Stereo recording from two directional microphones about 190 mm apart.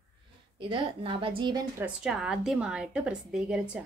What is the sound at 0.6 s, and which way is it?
A woman's voice, 25° right (ahead or behind).